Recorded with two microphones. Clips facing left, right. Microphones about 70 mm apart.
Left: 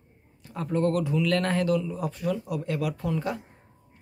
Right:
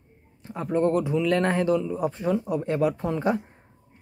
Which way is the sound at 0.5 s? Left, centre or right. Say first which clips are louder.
Right 3 dB; right.